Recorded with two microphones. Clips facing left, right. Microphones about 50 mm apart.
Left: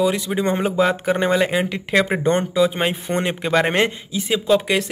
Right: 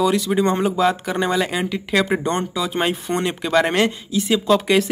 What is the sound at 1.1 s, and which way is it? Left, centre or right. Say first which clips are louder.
Speech: left 3 dB; left.